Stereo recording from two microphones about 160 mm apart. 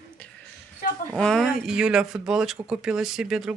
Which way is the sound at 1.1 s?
5° left (ahead or behind).